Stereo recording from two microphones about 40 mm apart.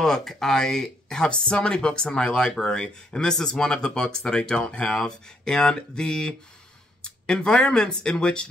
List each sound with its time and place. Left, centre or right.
0.0 s speech: centre
4.9 s speech: centre